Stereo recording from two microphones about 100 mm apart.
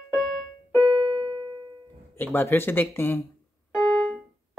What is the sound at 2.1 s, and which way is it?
Speech, 20° left (ahead or behind).